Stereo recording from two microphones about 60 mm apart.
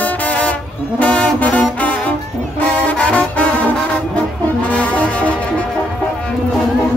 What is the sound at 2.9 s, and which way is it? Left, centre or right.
Brass instrument, left.